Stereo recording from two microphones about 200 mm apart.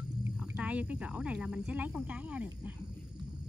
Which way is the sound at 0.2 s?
5° right (ahead or behind).